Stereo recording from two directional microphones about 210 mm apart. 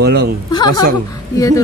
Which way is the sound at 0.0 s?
50° right (ahead or behind).